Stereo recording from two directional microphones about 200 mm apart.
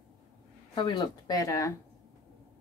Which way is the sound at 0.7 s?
25° left (ahead or behind).